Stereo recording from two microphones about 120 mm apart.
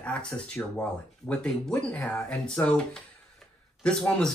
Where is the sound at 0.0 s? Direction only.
10° left (ahead or behind).